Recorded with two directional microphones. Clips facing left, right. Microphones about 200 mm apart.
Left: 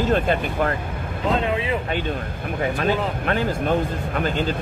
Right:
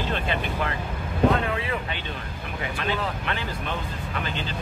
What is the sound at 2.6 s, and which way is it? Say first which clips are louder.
Speech: left 7 dB; 45° left (ahead or behind).